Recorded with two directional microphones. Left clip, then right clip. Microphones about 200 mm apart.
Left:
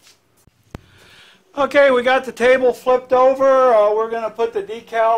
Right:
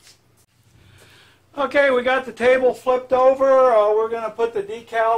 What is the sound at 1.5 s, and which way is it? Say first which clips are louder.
Speech: left 4 dB; 50° left (ahead or behind).